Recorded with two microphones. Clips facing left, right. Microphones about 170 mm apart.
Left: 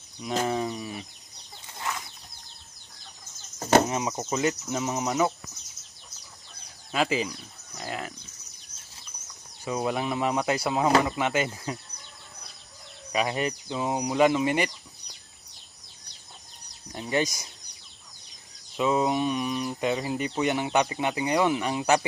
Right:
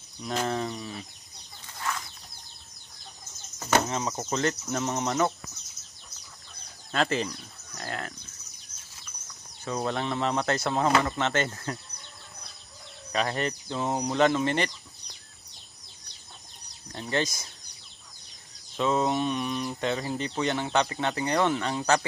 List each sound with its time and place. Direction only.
0.2 s bird: 5° left (ahead or behind)
1.8 s bird flight: 15° left (ahead or behind)
3.5 s bird flight: 35° left (ahead or behind)
3.8 s speech: 15° left (ahead or behind)
4.1 s speech: 5° left (ahead or behind)
6.9 s speech: 5° left (ahead or behind)
9.7 s speech: 10° left (ahead or behind)
13.1 s speech: 10° left (ahead or behind)
16.9 s speech: 15° left (ahead or behind)
18.8 s speech: 10° left (ahead or behind)